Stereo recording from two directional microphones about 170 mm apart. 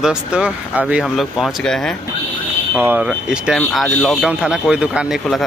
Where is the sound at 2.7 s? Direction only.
10° right (ahead or behind).